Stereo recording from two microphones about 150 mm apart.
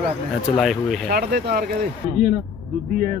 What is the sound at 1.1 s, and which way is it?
Speech, 90° right.